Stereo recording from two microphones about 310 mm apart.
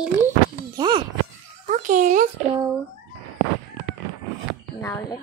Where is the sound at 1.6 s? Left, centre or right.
Right.